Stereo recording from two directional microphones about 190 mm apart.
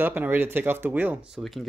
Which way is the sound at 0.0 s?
10° right (ahead or behind).